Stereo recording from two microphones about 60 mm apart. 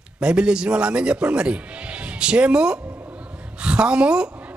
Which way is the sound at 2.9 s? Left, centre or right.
Right.